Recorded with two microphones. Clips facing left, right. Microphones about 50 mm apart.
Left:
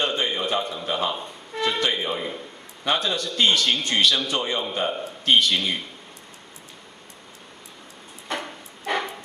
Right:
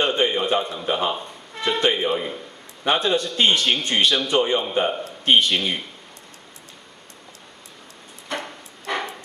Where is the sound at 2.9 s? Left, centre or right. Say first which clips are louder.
Right 4 dB; right.